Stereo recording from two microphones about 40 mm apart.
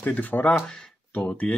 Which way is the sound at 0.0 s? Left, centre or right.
Left.